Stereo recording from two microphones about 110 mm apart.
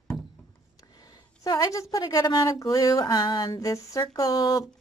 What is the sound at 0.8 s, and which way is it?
A woman's voice, 35° left (ahead or behind).